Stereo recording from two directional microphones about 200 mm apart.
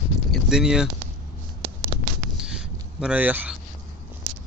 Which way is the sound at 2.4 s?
5° right (ahead or behind).